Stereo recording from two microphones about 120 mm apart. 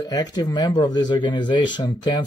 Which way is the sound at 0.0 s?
30° left (ahead or behind).